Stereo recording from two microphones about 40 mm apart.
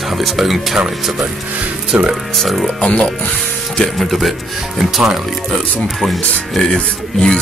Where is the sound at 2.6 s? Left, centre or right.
Left.